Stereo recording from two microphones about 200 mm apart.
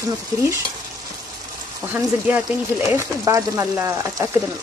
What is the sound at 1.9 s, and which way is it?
Speech, 10° right (ahead or behind).